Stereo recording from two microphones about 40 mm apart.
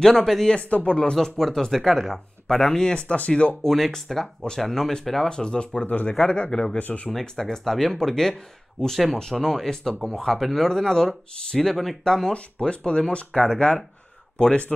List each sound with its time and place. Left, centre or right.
0.0 s speech: centre
0.6 s speech: left
1.1 s speech: centre
2.9 s speech: left
3.6 s speech: centre
5.3 s speech: left
6.8 s speech: left
7.1 s speech: centre
10.7 s speech: centre
12.0 s speech: centre